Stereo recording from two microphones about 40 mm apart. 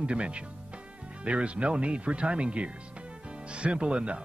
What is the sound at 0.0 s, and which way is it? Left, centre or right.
Speech, right.